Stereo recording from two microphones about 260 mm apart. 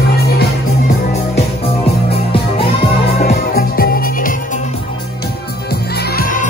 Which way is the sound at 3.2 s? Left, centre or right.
Left.